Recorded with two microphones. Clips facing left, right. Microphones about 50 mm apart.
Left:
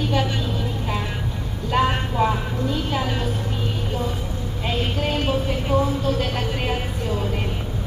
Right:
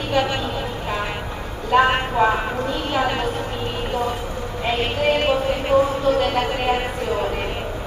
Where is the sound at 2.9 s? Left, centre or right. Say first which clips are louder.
Right 4 dB; right.